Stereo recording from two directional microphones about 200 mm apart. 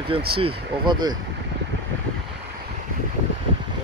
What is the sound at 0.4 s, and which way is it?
Speech, 25° right (ahead or behind).